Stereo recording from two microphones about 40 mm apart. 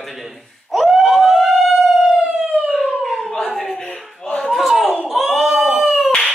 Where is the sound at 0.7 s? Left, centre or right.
Centre.